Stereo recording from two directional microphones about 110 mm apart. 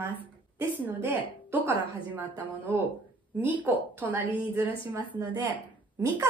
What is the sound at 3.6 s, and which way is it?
A woman's voice, 15° right (ahead or behind).